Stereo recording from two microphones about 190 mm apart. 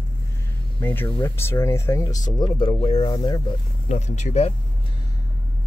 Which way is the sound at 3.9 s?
40° left (ahead or behind).